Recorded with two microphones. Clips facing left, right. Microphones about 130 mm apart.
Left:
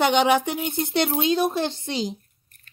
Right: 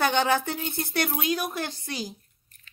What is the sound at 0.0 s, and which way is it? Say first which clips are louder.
Speech: left 5 dB; 20° left (ahead or behind).